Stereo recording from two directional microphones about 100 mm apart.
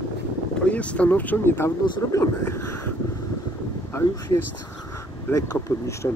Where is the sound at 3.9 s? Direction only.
25° left (ahead or behind).